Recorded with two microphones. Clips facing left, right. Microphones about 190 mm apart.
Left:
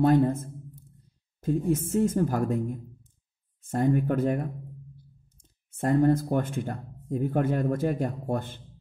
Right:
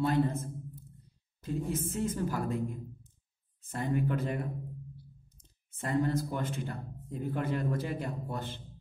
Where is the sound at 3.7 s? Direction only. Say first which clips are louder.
Left 7 dB; 50° left (ahead or behind).